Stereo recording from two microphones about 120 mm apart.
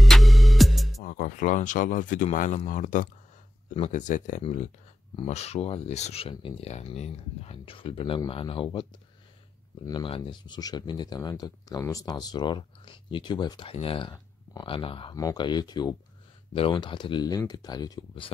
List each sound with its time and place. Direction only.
0.0 s music: centre (ahead or behind)
1.1 s speech: 90° left
4.4 s speech: 55° left (ahead or behind)
10.0 s speech: 45° left (ahead or behind)
14.1 s a sound: 30° left (ahead or behind)
14.7 s speech: 50° left (ahead or behind)
15.1 s speech: 35° left (ahead or behind)
16.5 s speech: 45° left (ahead or behind)